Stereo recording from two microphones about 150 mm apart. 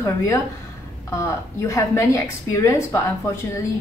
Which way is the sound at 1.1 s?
20° left (ahead or behind).